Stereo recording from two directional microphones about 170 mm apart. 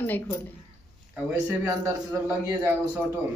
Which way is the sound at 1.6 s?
15° right (ahead or behind).